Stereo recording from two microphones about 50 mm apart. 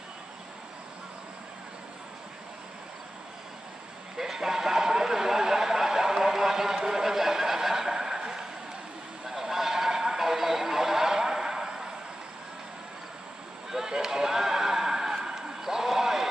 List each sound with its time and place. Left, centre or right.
4.2 s a sound: centre
9.3 s honk: centre
13.7 s neigh: centre